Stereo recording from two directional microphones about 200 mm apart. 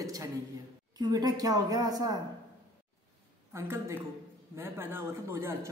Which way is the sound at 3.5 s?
10° right (ahead or behind).